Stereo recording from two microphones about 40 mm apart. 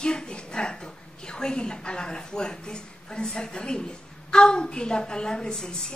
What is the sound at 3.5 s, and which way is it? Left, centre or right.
A woman's voice, left.